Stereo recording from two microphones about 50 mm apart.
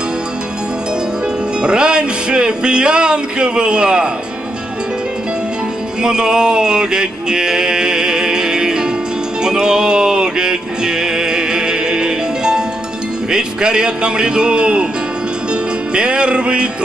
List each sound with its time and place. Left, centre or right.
1.6 s speech: centre
6.0 s a sound: centre
9.4 s music: centre
13.3 s speech: centre
15.9 s music: centre